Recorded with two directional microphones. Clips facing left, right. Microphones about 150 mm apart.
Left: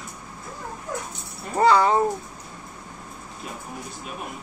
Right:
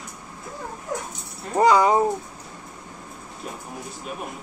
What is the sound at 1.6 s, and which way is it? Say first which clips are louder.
Speech: right 1 dB; 15° right (ahead or behind).